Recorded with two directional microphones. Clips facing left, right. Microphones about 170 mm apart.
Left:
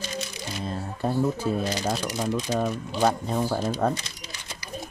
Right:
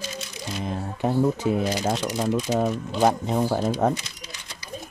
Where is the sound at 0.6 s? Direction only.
15° right (ahead or behind).